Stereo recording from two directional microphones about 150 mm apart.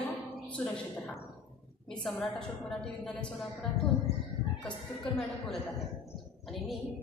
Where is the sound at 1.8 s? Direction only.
Centre (ahead or behind).